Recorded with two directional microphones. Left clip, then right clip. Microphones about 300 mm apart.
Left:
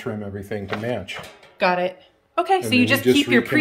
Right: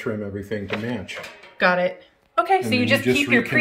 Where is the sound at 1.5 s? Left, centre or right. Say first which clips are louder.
Right 1 dB; centre.